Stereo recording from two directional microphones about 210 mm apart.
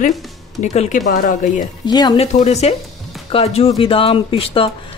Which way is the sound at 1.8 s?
20° left (ahead or behind).